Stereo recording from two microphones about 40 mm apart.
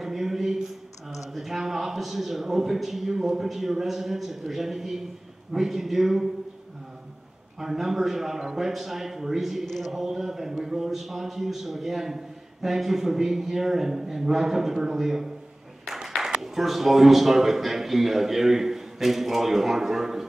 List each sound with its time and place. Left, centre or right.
0.0 s a sound: centre
1.1 s a man's voice: centre
7.6 s a man's voice: centre
9.7 s a man's voice: centre
9.9 s a man's voice: centre
16.3 s a man's voice: centre